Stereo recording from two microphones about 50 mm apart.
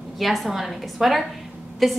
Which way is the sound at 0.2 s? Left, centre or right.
Centre.